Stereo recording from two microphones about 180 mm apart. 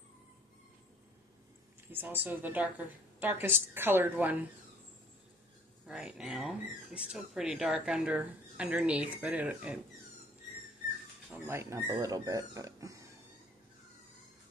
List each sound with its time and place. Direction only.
1.9 s a woman's voice: 10° right (ahead or behind)
5.9 s speech: 5° right (ahead or behind)
11.3 s speech: 15° right (ahead or behind)